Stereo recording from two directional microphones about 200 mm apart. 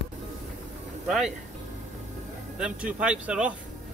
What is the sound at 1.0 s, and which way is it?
Speech, centre (ahead or behind).